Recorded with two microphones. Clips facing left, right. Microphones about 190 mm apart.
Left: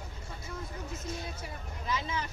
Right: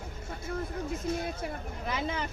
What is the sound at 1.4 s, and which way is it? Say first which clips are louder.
Speech: right 6 dB; 60° right (ahead or behind).